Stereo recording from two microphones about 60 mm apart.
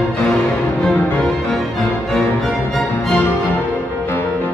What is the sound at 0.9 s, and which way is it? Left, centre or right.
Music, left.